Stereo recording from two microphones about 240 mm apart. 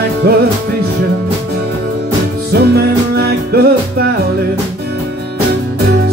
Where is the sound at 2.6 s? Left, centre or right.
Right.